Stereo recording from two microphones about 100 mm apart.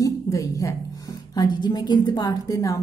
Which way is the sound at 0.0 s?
35° left (ahead or behind).